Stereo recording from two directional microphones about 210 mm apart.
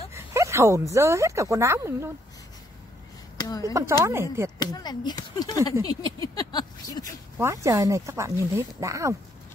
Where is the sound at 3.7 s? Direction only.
15° right (ahead or behind).